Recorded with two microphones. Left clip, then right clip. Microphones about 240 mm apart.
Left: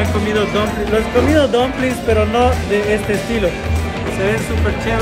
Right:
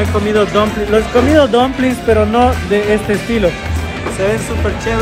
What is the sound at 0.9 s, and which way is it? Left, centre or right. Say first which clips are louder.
Speech: right 3 dB; centre.